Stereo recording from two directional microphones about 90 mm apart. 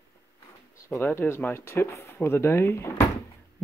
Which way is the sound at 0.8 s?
25° left (ahead or behind).